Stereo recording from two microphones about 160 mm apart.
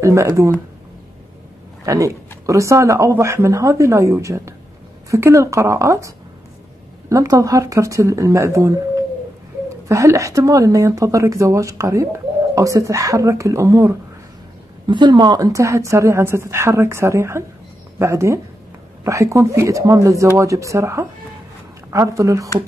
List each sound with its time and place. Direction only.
0.0 s speech: 20° right (ahead or behind)
1.9 s speech: 20° right (ahead or behind)